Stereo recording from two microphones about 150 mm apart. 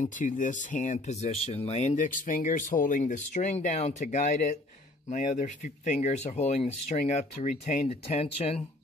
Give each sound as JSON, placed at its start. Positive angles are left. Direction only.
{"t": 0.0, "sound": "speech", "side_deg": 55}